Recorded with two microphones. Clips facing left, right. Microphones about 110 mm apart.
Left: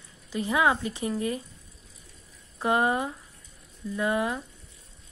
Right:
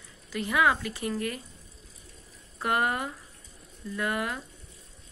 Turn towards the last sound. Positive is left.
turn(degrees=20)  # may be behind; listen again after turning